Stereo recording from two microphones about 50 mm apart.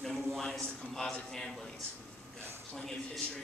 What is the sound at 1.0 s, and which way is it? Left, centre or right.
Speech, centre.